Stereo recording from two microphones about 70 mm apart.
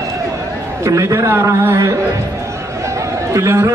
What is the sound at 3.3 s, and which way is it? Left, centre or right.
Speech, right.